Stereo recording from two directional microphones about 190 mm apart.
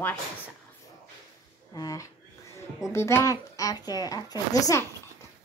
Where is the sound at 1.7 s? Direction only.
20° left (ahead or behind).